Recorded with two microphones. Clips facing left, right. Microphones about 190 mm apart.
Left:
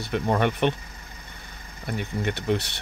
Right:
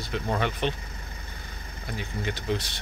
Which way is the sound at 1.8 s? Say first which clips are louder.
Left 5 dB; 60° left (ahead or behind).